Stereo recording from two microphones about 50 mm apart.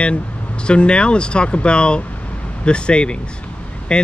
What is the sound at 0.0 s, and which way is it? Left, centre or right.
Speech, left.